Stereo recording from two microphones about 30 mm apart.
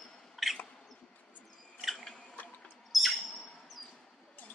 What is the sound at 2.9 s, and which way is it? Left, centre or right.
Bird, centre.